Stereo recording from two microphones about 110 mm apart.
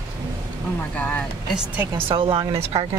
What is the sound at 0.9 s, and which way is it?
Speech, 15° left (ahead or behind).